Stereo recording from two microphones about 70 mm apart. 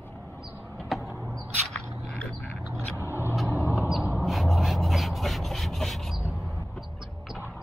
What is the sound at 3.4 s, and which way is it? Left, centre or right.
Vehicle, left.